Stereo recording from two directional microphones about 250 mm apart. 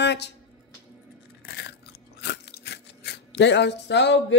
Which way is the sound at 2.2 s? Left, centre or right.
Left.